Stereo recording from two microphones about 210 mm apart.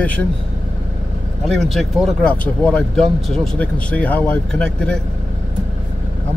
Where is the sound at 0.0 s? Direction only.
5° left (ahead or behind).